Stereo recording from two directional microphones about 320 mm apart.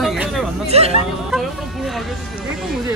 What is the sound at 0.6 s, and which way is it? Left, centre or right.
Speech, centre.